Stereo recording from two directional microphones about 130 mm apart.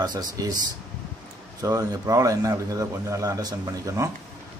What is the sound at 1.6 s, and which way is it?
Speech, 25° right (ahead or behind).